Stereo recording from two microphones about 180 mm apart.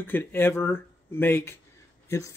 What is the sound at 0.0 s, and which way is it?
Speech, 10° left (ahead or behind).